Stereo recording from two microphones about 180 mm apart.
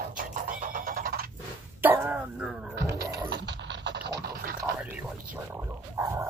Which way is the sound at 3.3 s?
75° right (ahead or behind).